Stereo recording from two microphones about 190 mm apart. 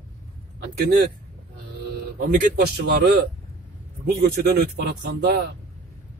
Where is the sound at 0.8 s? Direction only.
60° right (ahead or behind).